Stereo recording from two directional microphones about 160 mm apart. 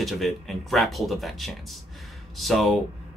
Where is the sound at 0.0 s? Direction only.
Centre (ahead or behind).